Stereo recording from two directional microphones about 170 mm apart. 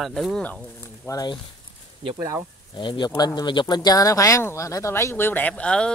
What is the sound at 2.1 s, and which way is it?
Speech, 20° right (ahead or behind).